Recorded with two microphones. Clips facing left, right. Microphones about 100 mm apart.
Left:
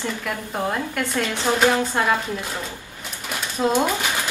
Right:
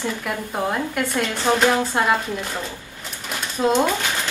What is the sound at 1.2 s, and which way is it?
Speech, centre (ahead or behind).